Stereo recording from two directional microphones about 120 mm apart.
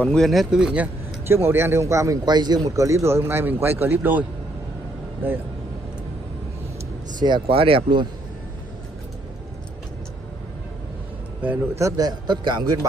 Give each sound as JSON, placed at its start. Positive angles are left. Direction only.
{"t": 0.0, "sound": "speech", "side_deg": 5}
{"t": 1.2, "sound": "a man's voice", "side_deg": -20}
{"t": 5.2, "sound": "speech", "side_deg": -15}
{"t": 7.2, "sound": "a man's voice", "side_deg": -45}
{"t": 11.4, "sound": "speech", "side_deg": -10}
{"t": 11.8, "sound": "a man's voice", "side_deg": -35}